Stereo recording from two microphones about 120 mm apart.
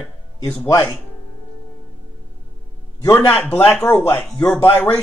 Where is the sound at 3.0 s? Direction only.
20° left (ahead or behind).